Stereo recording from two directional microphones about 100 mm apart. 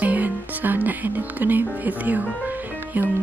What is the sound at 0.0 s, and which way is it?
Speech, 15° right (ahead or behind).